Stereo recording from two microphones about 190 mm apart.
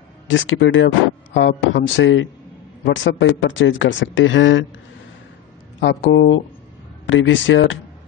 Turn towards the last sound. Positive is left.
turn(degrees=80)